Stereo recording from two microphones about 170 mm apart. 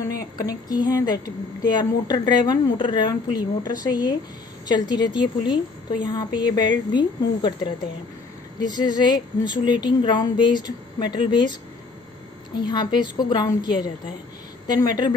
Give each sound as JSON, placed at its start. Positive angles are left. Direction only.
{"t": 0.0, "sound": "speech", "side_deg": 20}
{"t": 12.5, "sound": "speech", "side_deg": 25}